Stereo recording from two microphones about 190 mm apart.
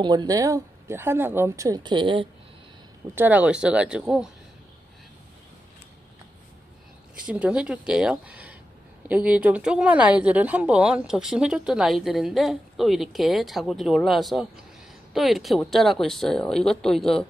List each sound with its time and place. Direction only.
0.0 s speech: 20° right (ahead or behind)
3.2 s a woman's voice: 10° right (ahead or behind)
7.2 s a woman's voice: 5° right (ahead or behind)